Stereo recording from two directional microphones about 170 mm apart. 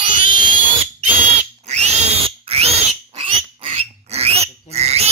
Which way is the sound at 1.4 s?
40° right (ahead or behind).